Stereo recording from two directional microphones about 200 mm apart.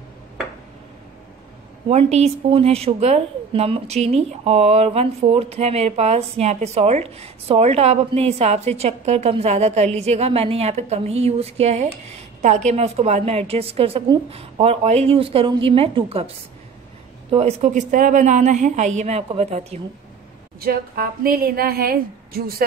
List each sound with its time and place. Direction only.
1.9 s a woman's voice: 30° right (ahead or behind)
17.3 s a woman's voice: 30° right (ahead or behind)
20.6 s speech: 50° right (ahead or behind)